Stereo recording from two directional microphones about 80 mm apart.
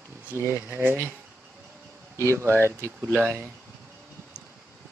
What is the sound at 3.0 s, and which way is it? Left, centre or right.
Speech, right.